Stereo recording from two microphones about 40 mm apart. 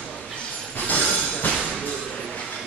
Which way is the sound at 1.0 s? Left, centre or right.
Left.